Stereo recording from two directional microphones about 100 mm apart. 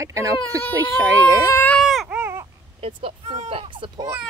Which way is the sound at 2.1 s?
25° right (ahead or behind).